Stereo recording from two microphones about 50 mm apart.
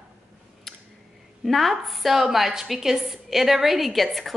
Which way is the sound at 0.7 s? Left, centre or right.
Centre.